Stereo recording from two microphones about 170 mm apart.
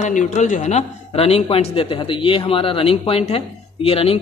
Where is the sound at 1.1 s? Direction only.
35° left (ahead or behind).